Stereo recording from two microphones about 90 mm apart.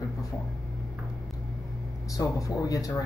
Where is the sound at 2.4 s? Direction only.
40° left (ahead or behind).